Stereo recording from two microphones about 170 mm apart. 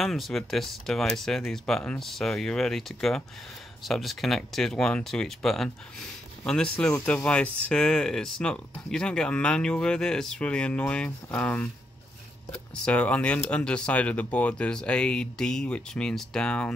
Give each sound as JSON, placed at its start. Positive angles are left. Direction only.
{"t": 0.0, "sound": "speech", "side_deg": 0}
{"t": 12.8, "sound": "speech", "side_deg": 5}